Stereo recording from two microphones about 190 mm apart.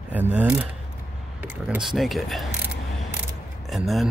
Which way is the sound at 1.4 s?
10° right (ahead or behind).